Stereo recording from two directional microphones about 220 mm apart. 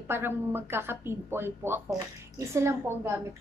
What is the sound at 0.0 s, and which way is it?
Speech, 10° right (ahead or behind).